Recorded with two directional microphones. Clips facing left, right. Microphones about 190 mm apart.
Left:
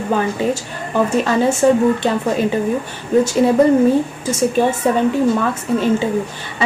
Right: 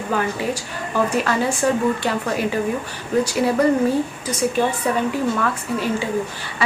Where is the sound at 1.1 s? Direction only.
25° left (ahead or behind).